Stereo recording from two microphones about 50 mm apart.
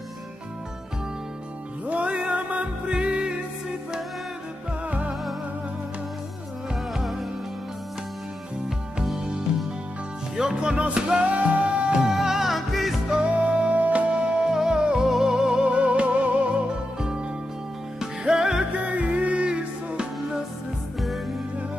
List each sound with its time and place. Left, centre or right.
1.9 s music: right
4.8 s music: right
6.7 s music: centre
9.0 s music: centre
13.2 s music: right
17.9 s music: centre
18.7 s music: right